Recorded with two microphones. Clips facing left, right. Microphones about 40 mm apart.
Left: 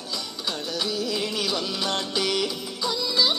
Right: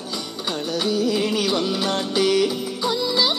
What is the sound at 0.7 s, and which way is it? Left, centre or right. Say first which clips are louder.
Music: right 7 dB; right.